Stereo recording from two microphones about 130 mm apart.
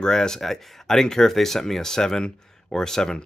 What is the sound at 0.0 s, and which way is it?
Speech, 5° left (ahead or behind).